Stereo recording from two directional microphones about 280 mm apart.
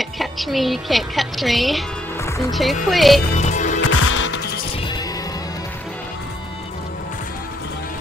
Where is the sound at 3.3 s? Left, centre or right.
Left.